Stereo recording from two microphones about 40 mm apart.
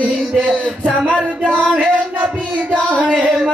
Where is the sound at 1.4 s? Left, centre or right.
Left.